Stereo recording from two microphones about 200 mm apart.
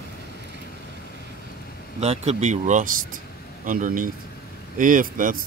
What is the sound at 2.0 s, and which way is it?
Speech, 30° right (ahead or behind).